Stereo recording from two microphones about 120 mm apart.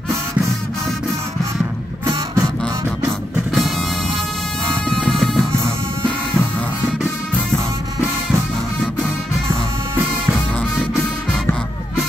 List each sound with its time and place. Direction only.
2.0 s music: 35° right (ahead or behind)
2.6 s music: centre (ahead or behind)
4.8 s music: centre (ahead or behind)
9.5 s music: 15° right (ahead or behind)